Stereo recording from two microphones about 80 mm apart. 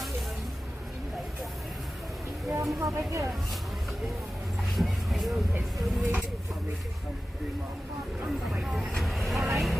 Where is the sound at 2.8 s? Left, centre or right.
Right.